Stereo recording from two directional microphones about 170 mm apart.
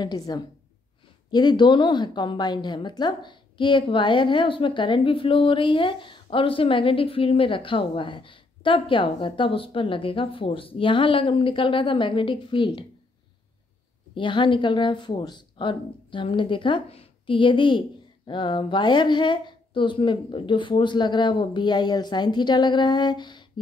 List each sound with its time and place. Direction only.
0.0 s a woman's voice: 25° left (ahead or behind)
14.1 s a woman's voice: 30° left (ahead or behind)